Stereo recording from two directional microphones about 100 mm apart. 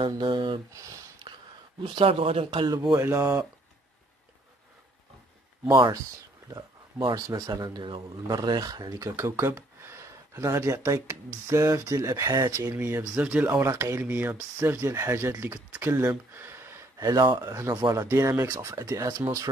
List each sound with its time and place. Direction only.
0.0 s speech: 55° right (ahead or behind)
0.7 s speech: 30° right (ahead or behind)
1.8 s speech: 70° right (ahead or behind)
2.7 s speech: 45° right (ahead or behind)
3.0 s speech: 25° right (ahead or behind)
6.5 s speech: 45° right (ahead or behind)
7.2 s speech: 35° right (ahead or behind)
13.1 s speech: 10° right (ahead or behind)
13.7 s speech: 25° right (ahead or behind)
16.3 s gasp: 25° right (ahead or behind)
17.0 s speech: 45° right (ahead or behind)
17.4 s speech: 30° right (ahead or behind)